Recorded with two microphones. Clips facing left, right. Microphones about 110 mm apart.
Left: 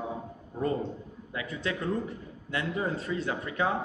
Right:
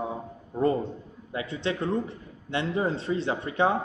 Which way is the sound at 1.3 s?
25° right (ahead or behind).